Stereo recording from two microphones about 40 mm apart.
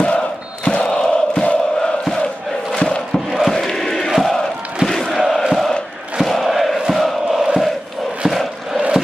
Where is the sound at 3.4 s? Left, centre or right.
Centre.